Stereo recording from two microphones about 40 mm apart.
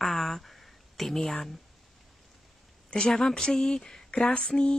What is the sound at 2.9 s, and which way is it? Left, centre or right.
Speech, centre.